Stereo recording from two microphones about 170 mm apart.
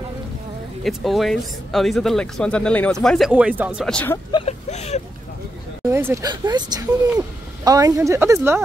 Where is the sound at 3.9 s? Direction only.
5° left (ahead or behind).